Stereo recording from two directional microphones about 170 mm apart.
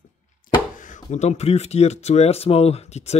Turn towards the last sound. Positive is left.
turn(degrees=40)  # may be behind; listen again after turning